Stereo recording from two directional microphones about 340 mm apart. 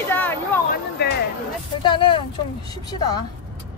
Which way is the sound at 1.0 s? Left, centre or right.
Left.